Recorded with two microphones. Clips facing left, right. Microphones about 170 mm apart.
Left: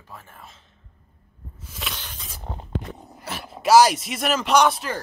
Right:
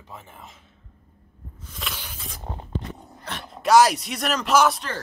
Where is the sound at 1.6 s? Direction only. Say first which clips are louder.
Left 1 dB; 5° left (ahead or behind).